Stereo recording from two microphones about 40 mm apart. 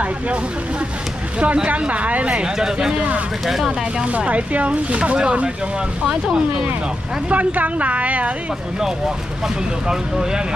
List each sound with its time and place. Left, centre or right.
1.4 s speech: right
2.4 s speech: centre
4.3 s speech: right
6.0 s speech: centre
7.2 s speech: right
9.8 s speech: centre